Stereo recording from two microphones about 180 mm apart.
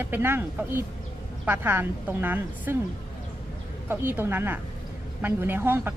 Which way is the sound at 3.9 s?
10° right (ahead or behind).